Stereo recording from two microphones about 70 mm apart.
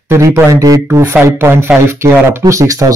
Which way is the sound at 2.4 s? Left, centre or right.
Right.